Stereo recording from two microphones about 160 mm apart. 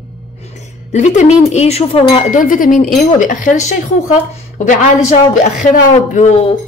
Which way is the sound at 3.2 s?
50° left (ahead or behind).